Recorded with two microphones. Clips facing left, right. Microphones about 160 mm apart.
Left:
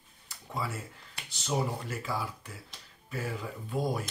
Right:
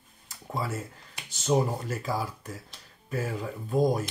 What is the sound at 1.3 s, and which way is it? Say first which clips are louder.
Speech: right 6 dB; 45° right (ahead or behind).